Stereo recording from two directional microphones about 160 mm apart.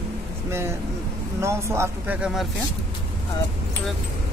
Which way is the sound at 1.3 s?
15° right (ahead or behind).